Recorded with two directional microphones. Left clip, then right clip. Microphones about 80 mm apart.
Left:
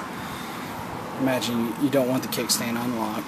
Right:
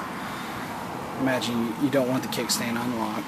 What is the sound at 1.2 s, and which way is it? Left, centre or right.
Speech, left.